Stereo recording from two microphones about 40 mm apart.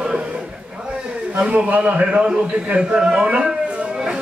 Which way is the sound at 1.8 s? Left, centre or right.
Right.